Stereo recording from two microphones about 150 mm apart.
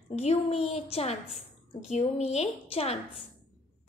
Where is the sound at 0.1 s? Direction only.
45° left (ahead or behind).